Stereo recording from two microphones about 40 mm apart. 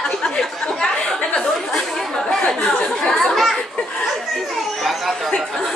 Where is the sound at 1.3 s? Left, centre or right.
Left.